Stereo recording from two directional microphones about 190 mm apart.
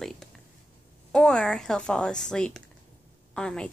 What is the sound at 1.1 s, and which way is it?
A woman's voice, 5° left (ahead or behind).